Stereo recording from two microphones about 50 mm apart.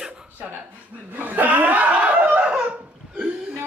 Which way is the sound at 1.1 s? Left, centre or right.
Right.